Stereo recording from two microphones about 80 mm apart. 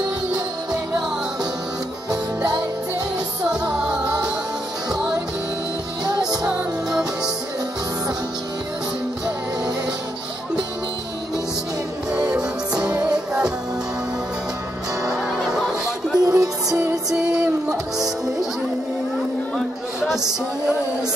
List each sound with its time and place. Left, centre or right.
3.7 s music: centre
6.5 s music: centre
12.3 s music: centre
16.2 s music: right
17.1 s music: centre